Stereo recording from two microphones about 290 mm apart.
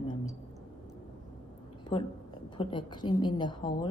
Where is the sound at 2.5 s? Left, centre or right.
Centre.